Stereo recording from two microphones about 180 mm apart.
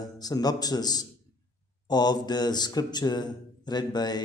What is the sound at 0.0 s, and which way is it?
Speech, 20° left (ahead or behind).